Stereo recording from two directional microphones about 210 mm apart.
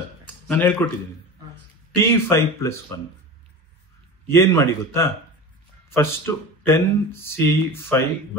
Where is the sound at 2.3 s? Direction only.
10° left (ahead or behind).